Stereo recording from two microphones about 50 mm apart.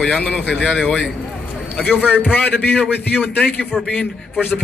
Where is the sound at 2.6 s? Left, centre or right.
Left.